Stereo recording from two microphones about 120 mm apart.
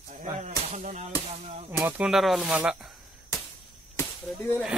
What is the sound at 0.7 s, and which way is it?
Music, 85° right.